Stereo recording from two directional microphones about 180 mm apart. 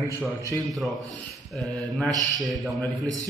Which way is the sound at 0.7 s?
Centre (ahead or behind).